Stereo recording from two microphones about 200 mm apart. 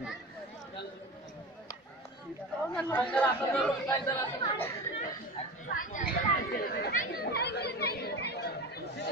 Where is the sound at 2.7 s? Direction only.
5° left (ahead or behind).